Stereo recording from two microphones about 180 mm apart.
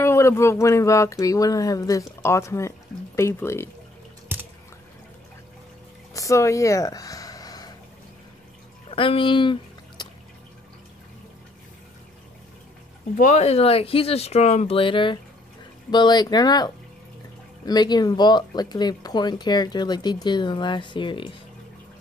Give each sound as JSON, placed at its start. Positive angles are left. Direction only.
{"t": 0.0, "sound": "speech", "side_deg": 15}
{"t": 4.3, "sound": "drip", "side_deg": -10}
{"t": 6.1, "sound": "a sound", "side_deg": 15}
{"t": 8.9, "sound": "speech", "side_deg": 30}
{"t": 13.1, "sound": "speech", "side_deg": 40}